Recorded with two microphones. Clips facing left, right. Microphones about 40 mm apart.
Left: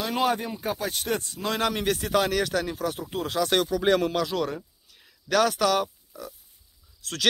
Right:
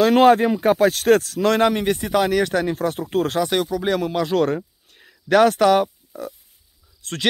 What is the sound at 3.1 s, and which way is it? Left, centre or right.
Speech, right.